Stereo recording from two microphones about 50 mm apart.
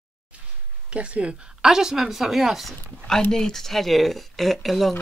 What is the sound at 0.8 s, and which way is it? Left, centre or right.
Speech, right.